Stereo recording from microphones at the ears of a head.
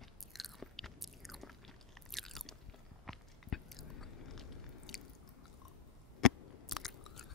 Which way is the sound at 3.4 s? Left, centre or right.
Left.